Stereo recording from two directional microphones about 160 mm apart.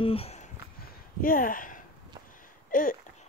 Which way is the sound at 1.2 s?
60° left (ahead or behind).